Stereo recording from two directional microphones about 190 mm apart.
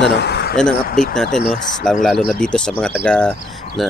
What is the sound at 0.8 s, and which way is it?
Speech, 45° left (ahead or behind).